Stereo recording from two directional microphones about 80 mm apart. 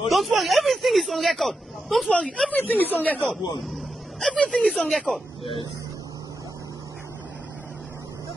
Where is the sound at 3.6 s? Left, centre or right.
Centre.